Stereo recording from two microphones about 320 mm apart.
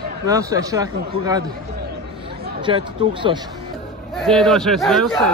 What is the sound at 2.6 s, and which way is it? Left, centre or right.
Speech, centre.